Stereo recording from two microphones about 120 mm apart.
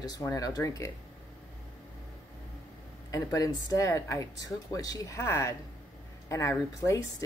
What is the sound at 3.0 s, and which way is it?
Speech, 30° left (ahead or behind).